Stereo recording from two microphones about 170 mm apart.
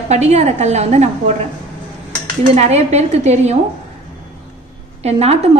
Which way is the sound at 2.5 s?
40° right (ahead or behind).